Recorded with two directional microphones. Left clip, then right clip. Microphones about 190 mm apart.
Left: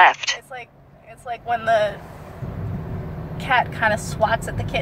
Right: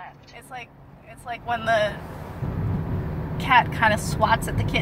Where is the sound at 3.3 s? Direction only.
5° right (ahead or behind).